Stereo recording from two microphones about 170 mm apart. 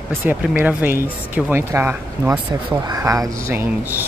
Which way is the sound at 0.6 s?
10° right (ahead or behind).